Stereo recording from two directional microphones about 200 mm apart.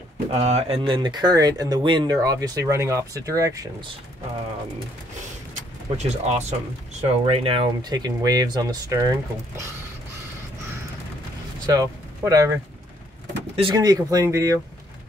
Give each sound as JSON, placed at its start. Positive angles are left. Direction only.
{"t": 0.3, "sound": "speech", "side_deg": -30}
{"t": 5.5, "sound": "vehicle", "side_deg": -35}
{"t": 6.9, "sound": "speech", "side_deg": -30}
{"t": 11.6, "sound": "speech", "side_deg": -20}
{"t": 13.6, "sound": "speech", "side_deg": -20}